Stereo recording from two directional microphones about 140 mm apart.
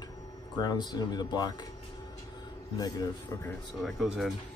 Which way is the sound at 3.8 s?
Centre (ahead or behind).